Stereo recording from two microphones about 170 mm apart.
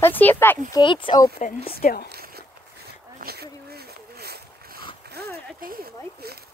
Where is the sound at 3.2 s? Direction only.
65° right (ahead or behind).